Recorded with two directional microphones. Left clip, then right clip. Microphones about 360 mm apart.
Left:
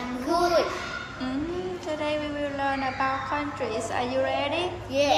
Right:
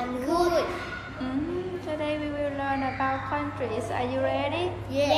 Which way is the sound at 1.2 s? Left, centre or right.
Centre.